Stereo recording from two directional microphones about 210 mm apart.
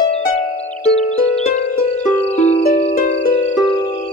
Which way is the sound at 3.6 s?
25° left (ahead or behind).